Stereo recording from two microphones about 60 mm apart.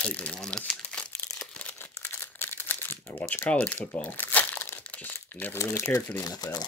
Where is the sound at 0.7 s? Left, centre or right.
Centre.